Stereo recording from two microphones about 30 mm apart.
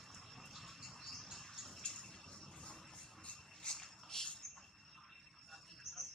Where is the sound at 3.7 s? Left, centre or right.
Centre.